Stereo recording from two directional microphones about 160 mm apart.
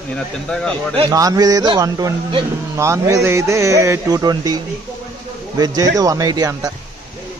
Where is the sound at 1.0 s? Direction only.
20° right (ahead or behind).